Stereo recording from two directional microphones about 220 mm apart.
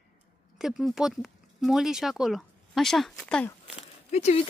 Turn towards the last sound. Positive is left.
turn(degrees=30)  # may be behind; listen again after turning